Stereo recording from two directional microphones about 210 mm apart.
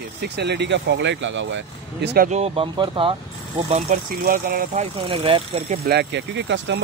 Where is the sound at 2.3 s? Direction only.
30° right (ahead or behind).